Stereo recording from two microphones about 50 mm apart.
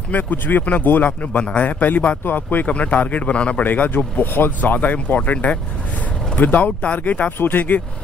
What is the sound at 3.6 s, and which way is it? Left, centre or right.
A man's voice, left.